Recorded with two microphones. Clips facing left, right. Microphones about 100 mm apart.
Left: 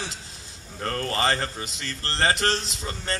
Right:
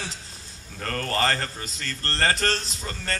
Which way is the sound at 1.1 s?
20° left (ahead or behind).